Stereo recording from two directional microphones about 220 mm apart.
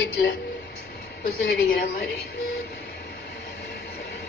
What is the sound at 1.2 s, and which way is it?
Speech, 45° left (ahead or behind).